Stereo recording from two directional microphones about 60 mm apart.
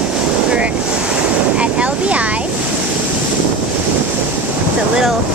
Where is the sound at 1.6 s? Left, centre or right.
Right.